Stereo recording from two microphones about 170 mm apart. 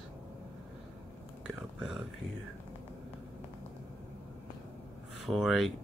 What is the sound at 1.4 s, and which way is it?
Speech, 5° right (ahead or behind).